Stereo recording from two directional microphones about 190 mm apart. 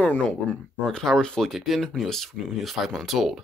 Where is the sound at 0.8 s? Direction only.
Centre (ahead or behind).